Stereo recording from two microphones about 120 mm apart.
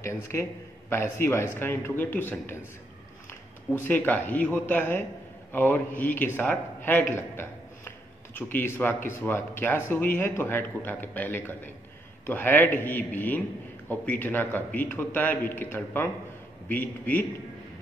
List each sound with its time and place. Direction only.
0.0 s speech: 25° left (ahead or behind)
3.8 s a man's voice: 15° left (ahead or behind)